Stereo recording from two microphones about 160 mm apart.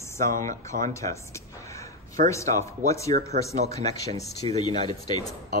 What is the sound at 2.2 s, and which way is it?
Speech, 55° right (ahead or behind).